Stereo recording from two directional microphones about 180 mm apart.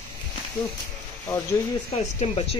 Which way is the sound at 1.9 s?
35° left (ahead or behind).